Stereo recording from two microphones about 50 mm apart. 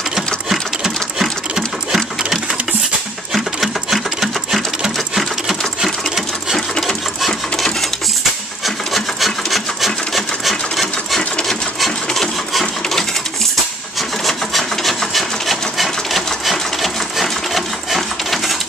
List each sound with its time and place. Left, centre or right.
1.1 s sewing machine: centre
3.3 s sewing machine: centre
6.8 s sewing machine: centre
13.9 s wood: centre